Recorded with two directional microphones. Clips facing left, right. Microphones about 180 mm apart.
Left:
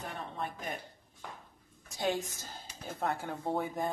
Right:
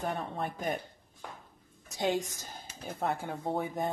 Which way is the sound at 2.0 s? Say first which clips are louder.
Right 2 dB; 15° right (ahead or behind).